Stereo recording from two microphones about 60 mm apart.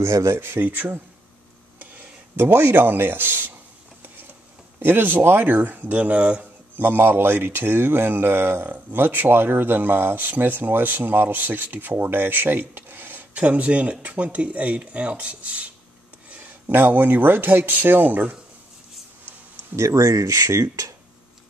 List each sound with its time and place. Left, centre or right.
0.0 s speech: right
0.4 s speech: right
2.3 s speech: right
4.7 s speech: right; by 6.4 s centre
6.8 s speech: right
13.3 s speech: right
16.6 s speech: right
19.7 s speech: right